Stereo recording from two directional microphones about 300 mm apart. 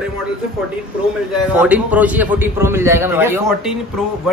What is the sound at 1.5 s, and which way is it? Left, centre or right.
A woman's voice, centre.